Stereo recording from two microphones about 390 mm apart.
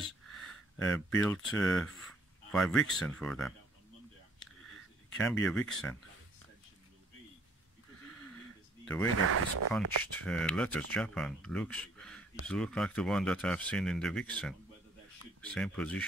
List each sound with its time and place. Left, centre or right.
0.0 s speech: centre
4.6 s a sound: centre
8.8 s speech: centre
9.2 s speech: right
10.1 s speech: centre